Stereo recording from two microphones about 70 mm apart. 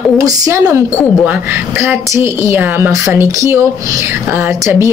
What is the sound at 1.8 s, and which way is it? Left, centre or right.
Speech, right.